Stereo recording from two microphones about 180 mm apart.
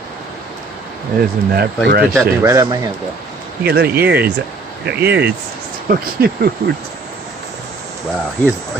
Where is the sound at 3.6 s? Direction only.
65° right (ahead or behind).